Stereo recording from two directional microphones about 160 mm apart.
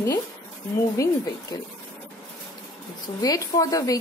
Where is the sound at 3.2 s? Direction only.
20° left (ahead or behind).